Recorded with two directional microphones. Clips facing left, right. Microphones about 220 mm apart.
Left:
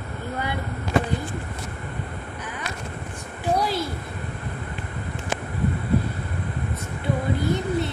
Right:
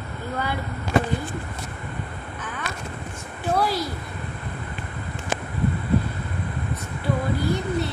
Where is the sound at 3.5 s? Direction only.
20° left (ahead or behind).